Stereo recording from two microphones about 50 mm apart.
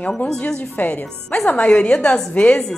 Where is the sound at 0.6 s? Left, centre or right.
Left.